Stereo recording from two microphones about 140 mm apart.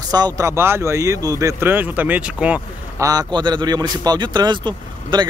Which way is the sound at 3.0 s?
25° right (ahead or behind).